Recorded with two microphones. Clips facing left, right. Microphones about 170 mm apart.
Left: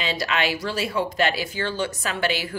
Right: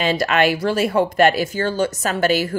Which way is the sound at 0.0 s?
50° right (ahead or behind).